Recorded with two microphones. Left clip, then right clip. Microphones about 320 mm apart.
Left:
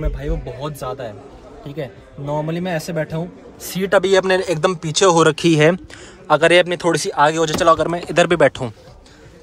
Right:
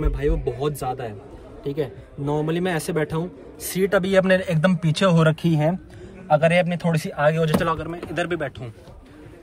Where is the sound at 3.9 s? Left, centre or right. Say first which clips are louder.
Left 6 dB; left.